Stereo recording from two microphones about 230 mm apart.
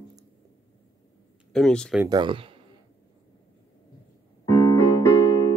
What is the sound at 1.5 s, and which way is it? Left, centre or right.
Speech, centre.